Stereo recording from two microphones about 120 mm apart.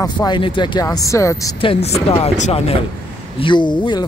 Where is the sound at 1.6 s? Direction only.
50° left (ahead or behind).